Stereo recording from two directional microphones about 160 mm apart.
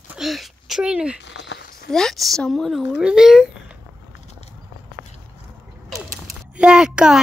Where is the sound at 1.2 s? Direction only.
90° left.